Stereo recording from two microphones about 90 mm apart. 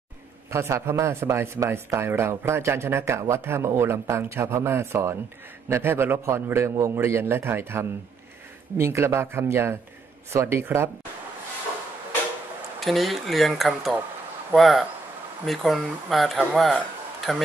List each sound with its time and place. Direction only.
0.5 s speech: 30° right (ahead or behind)
12.8 s speech: centre (ahead or behind)